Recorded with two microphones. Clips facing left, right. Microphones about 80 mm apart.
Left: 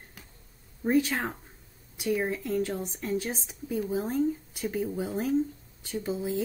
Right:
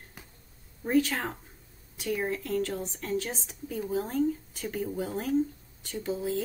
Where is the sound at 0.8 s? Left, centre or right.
Centre.